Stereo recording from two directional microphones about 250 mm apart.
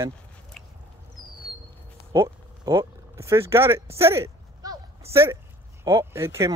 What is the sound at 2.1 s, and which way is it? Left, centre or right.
Speech, centre.